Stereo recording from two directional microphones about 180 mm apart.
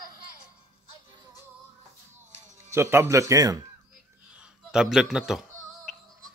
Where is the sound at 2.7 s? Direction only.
15° right (ahead or behind).